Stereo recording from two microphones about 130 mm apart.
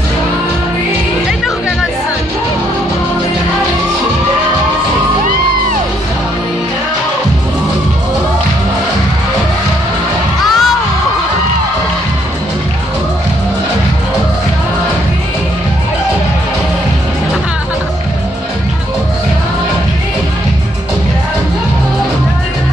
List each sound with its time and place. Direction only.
10.4 s crowd: centre (ahead or behind)